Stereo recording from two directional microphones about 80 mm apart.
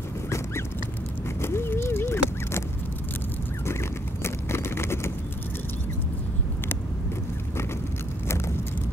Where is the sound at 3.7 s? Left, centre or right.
Left.